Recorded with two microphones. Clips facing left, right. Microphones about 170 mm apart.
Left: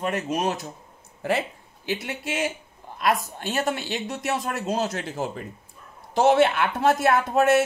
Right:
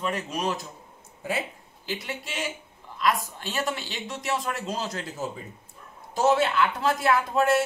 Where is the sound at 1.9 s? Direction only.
60° left (ahead or behind).